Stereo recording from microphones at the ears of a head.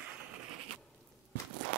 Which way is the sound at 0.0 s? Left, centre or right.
Right.